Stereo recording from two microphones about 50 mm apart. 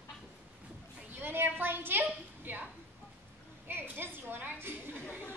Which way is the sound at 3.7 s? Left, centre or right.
Right.